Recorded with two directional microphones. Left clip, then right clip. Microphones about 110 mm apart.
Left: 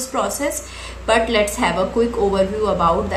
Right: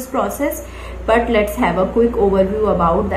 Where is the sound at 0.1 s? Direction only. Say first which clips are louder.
Right 3 dB; 20° left (ahead or behind).